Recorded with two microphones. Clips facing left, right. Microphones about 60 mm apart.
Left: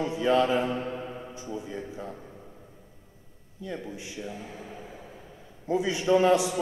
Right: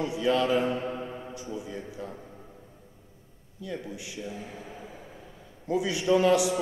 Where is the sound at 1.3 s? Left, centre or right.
Left.